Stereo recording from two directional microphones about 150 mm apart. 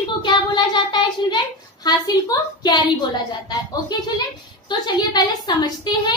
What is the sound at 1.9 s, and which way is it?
A woman's voice, 25° left (ahead or behind).